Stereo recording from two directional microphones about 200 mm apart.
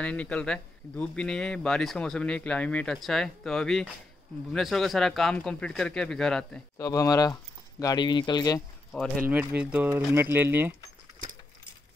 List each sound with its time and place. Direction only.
0.0 s a man's voice: 5° left (ahead or behind)
6.8 s speech: 15° left (ahead or behind)
9.2 s speech: 10° right (ahead or behind)